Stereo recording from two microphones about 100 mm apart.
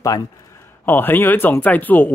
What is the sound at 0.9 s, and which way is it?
Speech, 20° left (ahead or behind).